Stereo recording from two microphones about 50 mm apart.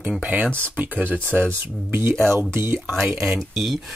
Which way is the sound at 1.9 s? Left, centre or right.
Right.